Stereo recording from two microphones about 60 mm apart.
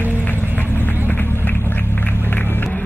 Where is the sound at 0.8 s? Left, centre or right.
Left.